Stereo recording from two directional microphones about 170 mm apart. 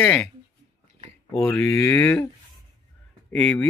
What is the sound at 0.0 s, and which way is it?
Speech, 5° left (ahead or behind).